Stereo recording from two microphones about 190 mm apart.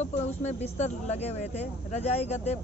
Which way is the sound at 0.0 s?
35° left (ahead or behind).